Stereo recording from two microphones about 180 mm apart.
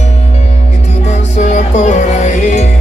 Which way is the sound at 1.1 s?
40° left (ahead or behind).